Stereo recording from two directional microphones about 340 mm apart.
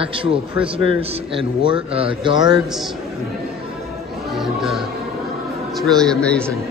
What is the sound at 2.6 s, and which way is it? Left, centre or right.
Speech, centre.